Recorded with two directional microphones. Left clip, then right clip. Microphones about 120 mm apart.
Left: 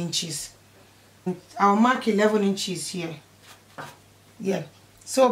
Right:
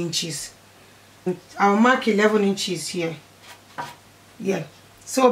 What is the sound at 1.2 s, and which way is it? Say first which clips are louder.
Speech: right 1 dB; 15° left (ahead or behind).